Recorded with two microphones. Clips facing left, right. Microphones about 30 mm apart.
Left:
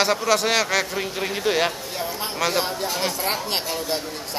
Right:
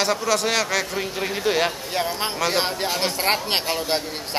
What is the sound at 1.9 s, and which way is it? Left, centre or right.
Speech, right.